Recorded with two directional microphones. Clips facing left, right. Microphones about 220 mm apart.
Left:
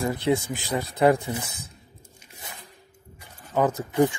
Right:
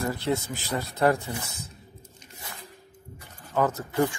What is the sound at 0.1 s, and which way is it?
Speech, 15° left (ahead or behind).